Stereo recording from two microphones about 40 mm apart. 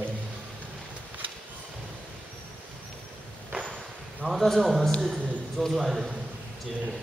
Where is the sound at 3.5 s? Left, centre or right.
Right.